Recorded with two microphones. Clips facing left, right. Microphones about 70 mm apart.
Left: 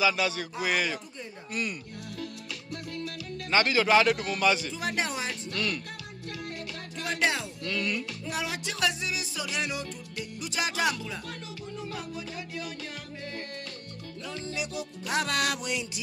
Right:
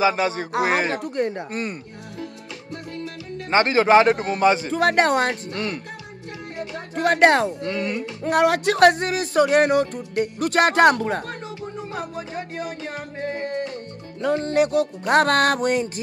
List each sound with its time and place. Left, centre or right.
0.0 s a man's voice: right
3.4 s a man's voice: right
4.7 s speech: right
5.5 s speech: right
7.0 s speech: right
7.6 s speech: right
8.2 s speech: right
11.9 s music: right
13.2 s music: right
14.2 s speech: right